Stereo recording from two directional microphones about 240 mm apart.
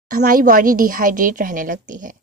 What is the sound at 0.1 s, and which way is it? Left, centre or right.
A woman's voice, right.